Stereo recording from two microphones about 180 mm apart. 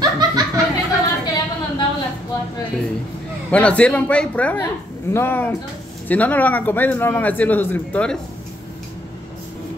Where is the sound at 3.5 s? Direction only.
5° left (ahead or behind).